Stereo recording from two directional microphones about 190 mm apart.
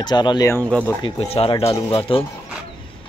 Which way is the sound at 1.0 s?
30° left (ahead or behind).